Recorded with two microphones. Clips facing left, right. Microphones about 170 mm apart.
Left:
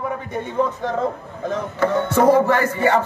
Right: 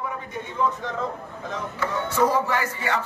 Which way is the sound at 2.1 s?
55° left (ahead or behind).